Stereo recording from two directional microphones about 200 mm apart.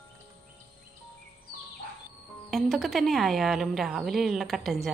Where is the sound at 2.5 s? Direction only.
Centre (ahead or behind).